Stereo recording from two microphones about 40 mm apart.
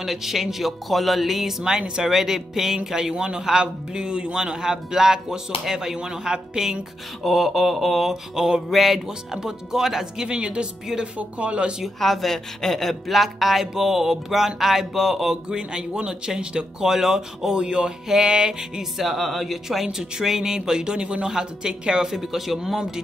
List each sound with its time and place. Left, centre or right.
0.0 s a man's voice: centre
2.8 s a man's voice: centre
7.2 s speech: centre
9.3 s a man's voice: centre
10.2 s speech: right
11.8 s speech: centre
13.1 s a man's voice: centre
15.5 s a man's voice: right
22.1 s a man's voice: centre